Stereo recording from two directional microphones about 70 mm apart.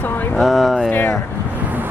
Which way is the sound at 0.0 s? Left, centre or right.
Left.